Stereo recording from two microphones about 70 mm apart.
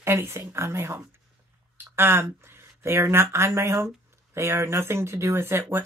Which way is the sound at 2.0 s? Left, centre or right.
Right.